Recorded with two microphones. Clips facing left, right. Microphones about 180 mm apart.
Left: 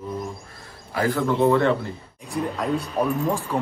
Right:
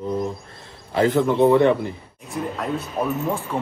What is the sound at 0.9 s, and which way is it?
Speech, 20° right (ahead or behind).